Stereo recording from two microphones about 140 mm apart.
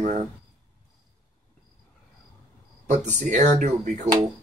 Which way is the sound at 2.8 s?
60° right (ahead or behind).